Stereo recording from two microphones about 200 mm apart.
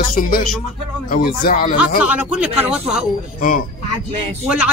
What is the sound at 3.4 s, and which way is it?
Speech, 45° left (ahead or behind).